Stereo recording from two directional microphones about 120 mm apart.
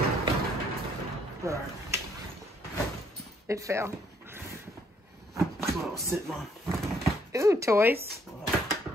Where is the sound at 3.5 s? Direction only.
25° right (ahead or behind).